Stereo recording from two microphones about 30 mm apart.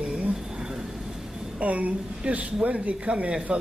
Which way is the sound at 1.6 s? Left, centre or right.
Right.